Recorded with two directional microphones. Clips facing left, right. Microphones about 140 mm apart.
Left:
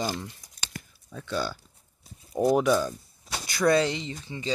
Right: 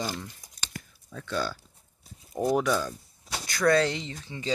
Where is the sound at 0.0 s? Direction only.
20° left (ahead or behind).